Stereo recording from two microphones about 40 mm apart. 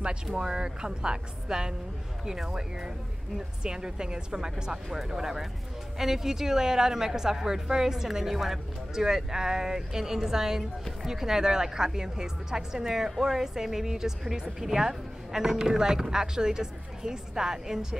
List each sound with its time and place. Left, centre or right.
0.0 s a woman's voice: right